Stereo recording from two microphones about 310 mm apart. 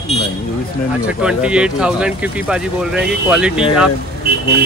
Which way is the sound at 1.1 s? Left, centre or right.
Centre.